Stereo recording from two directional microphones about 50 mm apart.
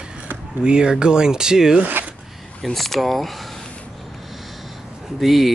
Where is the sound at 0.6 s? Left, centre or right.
Centre.